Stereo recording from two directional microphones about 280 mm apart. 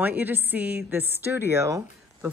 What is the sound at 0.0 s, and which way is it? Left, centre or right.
A woman's voice, centre.